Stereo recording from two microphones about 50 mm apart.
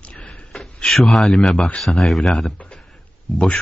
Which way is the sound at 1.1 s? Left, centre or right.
Centre.